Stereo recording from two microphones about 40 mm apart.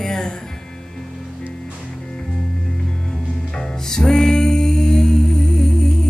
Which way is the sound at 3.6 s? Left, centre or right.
Centre.